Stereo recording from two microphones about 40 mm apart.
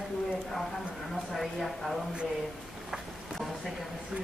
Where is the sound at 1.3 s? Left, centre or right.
Centre.